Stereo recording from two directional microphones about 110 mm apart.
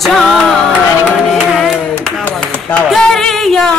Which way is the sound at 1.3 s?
Centre (ahead or behind).